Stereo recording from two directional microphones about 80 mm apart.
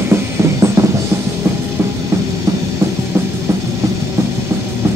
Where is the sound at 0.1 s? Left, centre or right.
Right.